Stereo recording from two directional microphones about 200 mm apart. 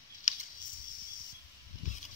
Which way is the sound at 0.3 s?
35° left (ahead or behind).